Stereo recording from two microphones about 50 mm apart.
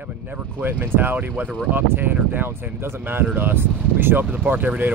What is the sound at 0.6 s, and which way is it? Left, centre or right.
Speech, right.